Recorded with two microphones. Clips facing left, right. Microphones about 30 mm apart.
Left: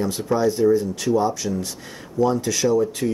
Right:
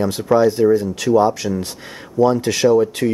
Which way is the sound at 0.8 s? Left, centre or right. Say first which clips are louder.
Right 5 dB; right.